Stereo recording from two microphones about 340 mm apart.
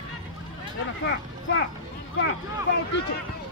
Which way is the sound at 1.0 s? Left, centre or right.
Left.